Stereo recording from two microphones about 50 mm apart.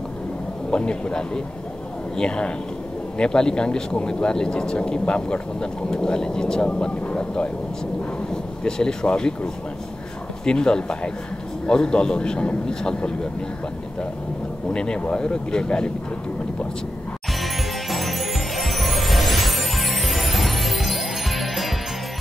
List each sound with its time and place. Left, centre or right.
0.7 s speech: left
8.6 s speech: centre
14.7 s speech: centre
17.3 s music: centre